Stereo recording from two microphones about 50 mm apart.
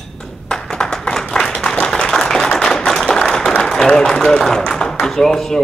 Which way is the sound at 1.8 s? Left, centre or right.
Left.